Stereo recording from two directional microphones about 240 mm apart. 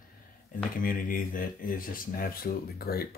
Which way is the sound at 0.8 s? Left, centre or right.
Left.